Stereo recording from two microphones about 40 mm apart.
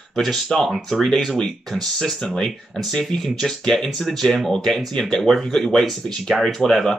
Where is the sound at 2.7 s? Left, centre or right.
Centre.